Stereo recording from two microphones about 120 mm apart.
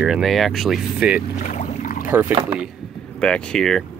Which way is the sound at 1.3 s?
85° left.